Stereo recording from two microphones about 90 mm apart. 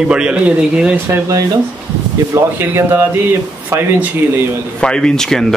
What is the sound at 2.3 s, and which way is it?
Speech, 25° right (ahead or behind).